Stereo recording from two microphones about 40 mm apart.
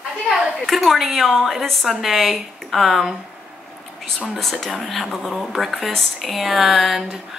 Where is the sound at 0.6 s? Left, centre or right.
Centre.